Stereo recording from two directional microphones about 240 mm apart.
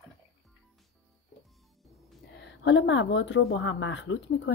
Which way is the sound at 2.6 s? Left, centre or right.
Left.